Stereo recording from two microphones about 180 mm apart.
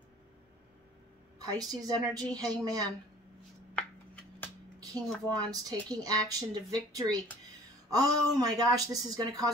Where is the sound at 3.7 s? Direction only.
5° left (ahead or behind).